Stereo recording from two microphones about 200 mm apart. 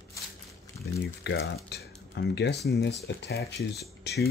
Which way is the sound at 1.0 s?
60° left (ahead or behind).